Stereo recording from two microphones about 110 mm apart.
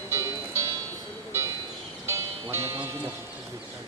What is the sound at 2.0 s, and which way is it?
Music, 25° right (ahead or behind).